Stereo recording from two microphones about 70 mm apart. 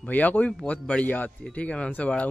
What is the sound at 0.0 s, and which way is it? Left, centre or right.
Speech, left.